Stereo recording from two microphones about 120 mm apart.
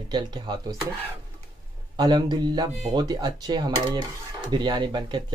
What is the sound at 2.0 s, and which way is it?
Speech, 35° right (ahead or behind).